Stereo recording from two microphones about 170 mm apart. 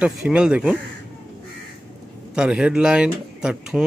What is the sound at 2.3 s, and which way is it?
Speech, 5° right (ahead or behind).